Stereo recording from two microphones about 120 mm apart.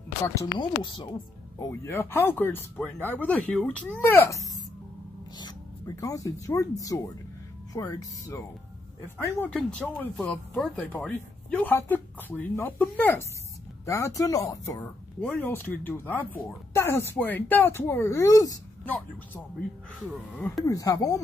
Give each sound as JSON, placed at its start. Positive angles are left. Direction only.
{"t": 0.2, "sound": "speech", "side_deg": 25}
{"t": 0.6, "sound": "speech", "side_deg": 40}
{"t": 1.9, "sound": "speech", "side_deg": 20}
{"t": 5.9, "sound": "speech", "side_deg": 25}
{"t": 9.5, "sound": "speech", "side_deg": 5}
{"t": 14.8, "sound": "speech", "side_deg": 15}
{"t": 18.9, "sound": "speech", "side_deg": 15}
{"t": 20.6, "sound": "speech", "side_deg": 30}